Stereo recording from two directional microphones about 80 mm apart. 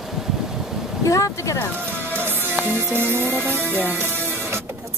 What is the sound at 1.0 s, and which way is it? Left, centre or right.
Speech, left.